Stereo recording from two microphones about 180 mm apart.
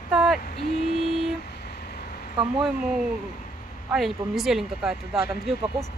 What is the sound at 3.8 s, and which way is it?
Speech, centre (ahead or behind).